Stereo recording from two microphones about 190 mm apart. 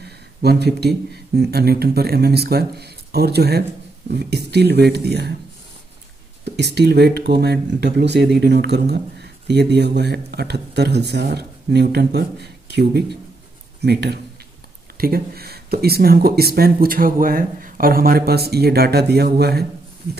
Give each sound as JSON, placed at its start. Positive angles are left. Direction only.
{"t": 0.4, "sound": "speech", "side_deg": -55}
{"t": 6.4, "sound": "speech", "side_deg": -60}